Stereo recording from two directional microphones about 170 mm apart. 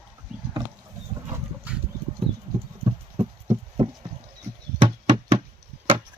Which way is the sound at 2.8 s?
35° right (ahead or behind).